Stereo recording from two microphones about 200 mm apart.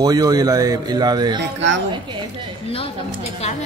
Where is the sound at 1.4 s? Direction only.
60° right (ahead or behind).